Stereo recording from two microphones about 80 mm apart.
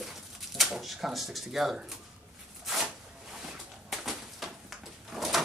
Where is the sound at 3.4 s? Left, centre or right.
Centre.